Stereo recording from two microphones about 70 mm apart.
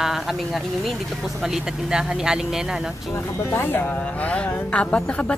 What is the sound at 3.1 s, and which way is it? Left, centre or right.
Speech, left.